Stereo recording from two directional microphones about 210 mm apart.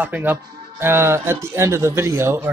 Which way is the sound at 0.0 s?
10° right (ahead or behind).